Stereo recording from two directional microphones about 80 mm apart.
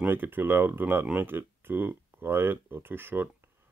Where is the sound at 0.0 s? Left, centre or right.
Right.